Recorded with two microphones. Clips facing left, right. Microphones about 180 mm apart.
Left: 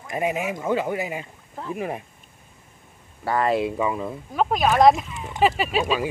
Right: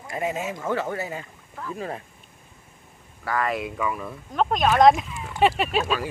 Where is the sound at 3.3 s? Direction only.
30° left (ahead or behind).